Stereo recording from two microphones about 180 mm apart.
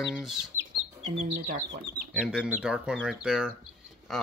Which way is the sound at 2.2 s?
5° right (ahead or behind).